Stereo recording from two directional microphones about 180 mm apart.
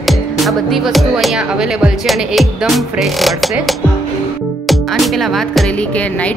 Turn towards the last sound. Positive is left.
turn(degrees=5)  # may be behind; listen again after turning